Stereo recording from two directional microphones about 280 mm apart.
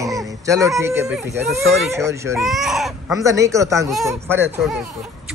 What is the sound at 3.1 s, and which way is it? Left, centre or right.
Speech, centre.